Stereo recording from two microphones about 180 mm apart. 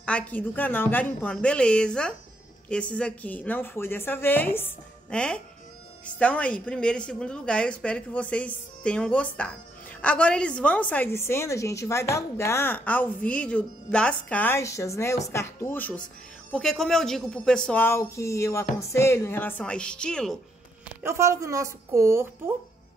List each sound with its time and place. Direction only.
0.0 s a woman's voice: 10° left (ahead or behind)
21.0 s a woman's voice: 15° right (ahead or behind)